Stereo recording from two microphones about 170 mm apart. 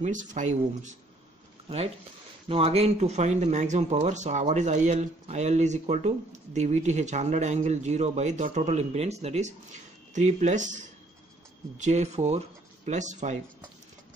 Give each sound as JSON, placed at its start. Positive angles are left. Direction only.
{"t": 0.0, "sound": "speech", "side_deg": -45}
{"t": 2.4, "sound": "speech", "side_deg": -35}
{"t": 11.8, "sound": "speech", "side_deg": -40}